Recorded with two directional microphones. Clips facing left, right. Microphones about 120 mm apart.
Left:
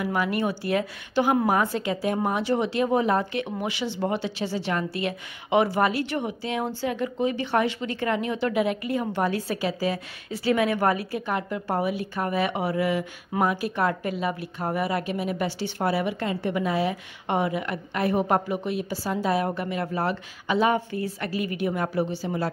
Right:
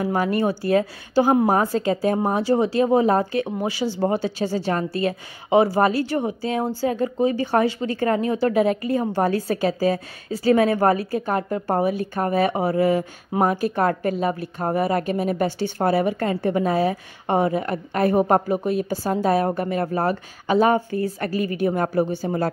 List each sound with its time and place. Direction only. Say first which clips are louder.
0.0 s a woman's voice: right 4 dB; 35° right (ahead or behind)